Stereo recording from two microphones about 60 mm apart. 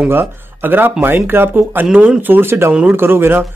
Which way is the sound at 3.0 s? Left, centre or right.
Right.